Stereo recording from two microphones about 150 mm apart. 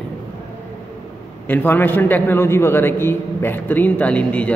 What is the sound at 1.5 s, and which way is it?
A man's voice, 10° left (ahead or behind).